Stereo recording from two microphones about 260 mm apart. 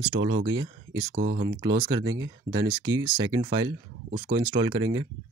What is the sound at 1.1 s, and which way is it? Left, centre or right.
Speech, right.